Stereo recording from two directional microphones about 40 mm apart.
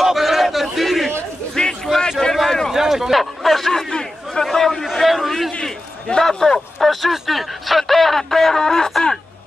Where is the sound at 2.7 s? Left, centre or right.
Centre.